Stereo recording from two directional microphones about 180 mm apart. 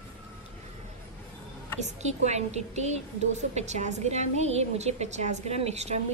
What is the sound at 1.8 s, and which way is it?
A woman's voice, 40° right (ahead or behind).